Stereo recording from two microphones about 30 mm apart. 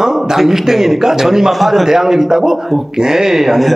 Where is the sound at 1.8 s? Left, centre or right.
Centre.